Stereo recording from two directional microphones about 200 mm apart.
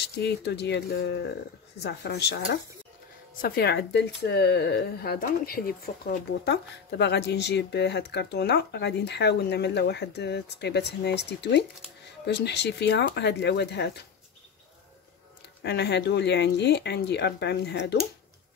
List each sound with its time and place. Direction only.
0.2 s speech: 55° left (ahead or behind)
15.6 s speech: 55° left (ahead or behind)